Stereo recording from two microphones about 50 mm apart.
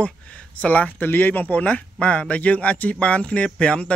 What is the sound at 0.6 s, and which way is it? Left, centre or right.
Speech, left.